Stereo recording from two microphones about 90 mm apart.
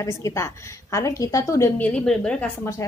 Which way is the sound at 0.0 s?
35° left (ahead or behind).